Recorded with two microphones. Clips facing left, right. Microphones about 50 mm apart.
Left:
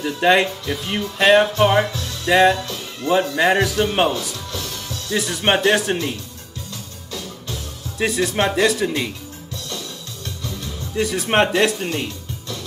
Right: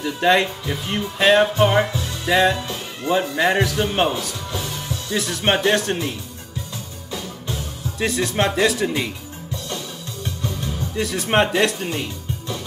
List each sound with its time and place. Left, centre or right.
0.0 s speech: centre
4.5 s music: centre
5.1 s speech: centre
7.1 s music: centre
8.0 s speech: centre
10.2 s music: right
11.0 s speech: centre